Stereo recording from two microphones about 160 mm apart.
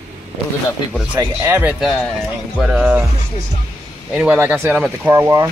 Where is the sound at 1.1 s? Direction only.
15° right (ahead or behind).